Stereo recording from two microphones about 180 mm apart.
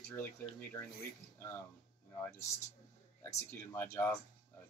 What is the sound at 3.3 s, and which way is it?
Speech, 15° left (ahead or behind).